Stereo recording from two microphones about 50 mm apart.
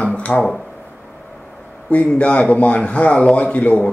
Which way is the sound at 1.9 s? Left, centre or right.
Left.